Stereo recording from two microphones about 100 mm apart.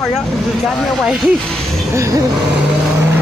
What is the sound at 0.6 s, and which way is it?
Speech, centre (ahead or behind).